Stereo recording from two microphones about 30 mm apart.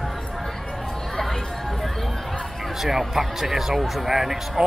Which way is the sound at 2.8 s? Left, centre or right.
Centre.